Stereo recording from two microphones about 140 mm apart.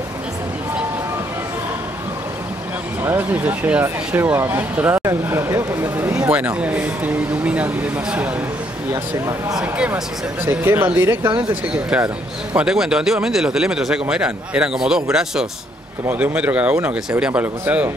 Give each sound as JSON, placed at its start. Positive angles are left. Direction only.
{"t": 3.0, "sound": "speech", "side_deg": -15}
{"t": 8.9, "sound": "speech", "side_deg": -20}
{"t": 9.6, "sound": "speech", "side_deg": -5}